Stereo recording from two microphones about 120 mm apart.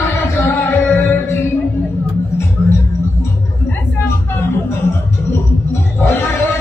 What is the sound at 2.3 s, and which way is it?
Music, 20° left (ahead or behind).